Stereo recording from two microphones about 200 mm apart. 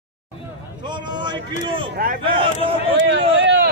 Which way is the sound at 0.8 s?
20° right (ahead or behind).